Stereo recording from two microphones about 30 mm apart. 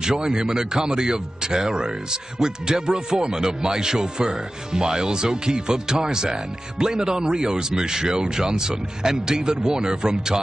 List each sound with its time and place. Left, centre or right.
0.0 s a man's voice: right